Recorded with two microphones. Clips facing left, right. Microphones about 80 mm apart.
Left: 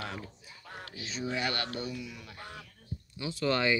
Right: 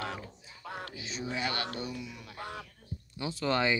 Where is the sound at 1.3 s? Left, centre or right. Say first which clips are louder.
Even; centre.